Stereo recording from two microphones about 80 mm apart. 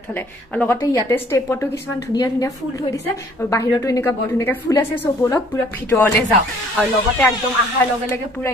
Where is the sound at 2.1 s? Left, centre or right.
Left.